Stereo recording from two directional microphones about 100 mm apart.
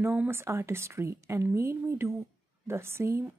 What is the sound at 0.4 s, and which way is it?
Speech, 30° right (ahead or behind).